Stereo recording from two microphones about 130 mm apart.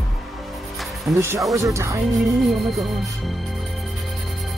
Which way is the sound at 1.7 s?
25° right (ahead or behind).